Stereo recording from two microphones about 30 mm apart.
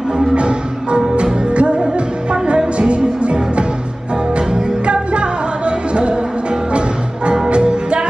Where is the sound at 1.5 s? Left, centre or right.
Right.